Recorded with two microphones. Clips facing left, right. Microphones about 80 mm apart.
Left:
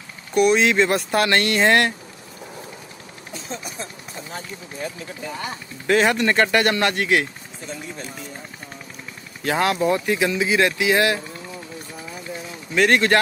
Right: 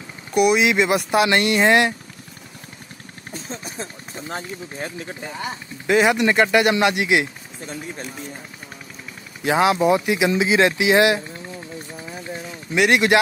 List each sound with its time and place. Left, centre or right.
0.3 s speech: centre
3.5 s vehicle: right
5.9 s speech: centre
9.4 s speech: centre
12.7 s speech: centre